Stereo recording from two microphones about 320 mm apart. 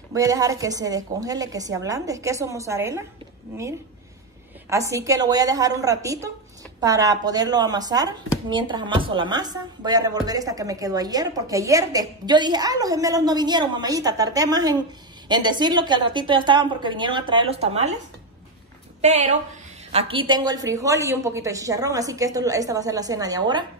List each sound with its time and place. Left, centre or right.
0.1 s speech: centre
4.6 s speech: centre
18.9 s a woman's voice: right